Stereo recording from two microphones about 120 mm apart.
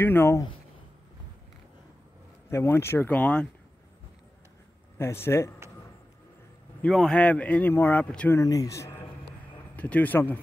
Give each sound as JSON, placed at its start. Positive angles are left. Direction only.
{"t": 0.0, "sound": "speech", "side_deg": 20}
{"t": 2.5, "sound": "speech", "side_deg": 20}
{"t": 4.9, "sound": "speech", "side_deg": 20}
{"t": 6.8, "sound": "speech", "side_deg": 5}
{"t": 8.4, "sound": "speech", "side_deg": 30}
{"t": 9.8, "sound": "speech", "side_deg": 10}